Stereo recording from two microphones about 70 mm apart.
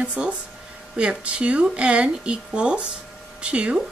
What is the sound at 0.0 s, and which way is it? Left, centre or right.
Speech, centre.